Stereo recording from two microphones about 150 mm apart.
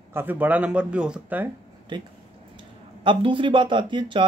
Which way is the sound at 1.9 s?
30° right (ahead or behind).